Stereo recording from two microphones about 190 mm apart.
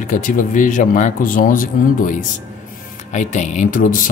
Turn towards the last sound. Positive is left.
turn(degrees=45)  # may be behind; listen again after turning